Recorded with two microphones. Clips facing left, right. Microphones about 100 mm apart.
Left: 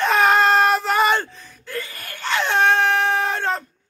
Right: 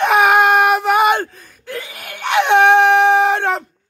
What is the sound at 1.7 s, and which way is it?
Groan, 15° right (ahead or behind).